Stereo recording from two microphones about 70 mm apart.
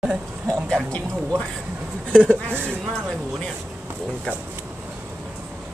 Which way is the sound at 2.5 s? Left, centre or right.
Right.